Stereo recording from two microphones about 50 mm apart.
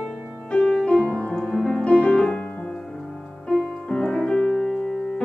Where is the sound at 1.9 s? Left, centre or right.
Left.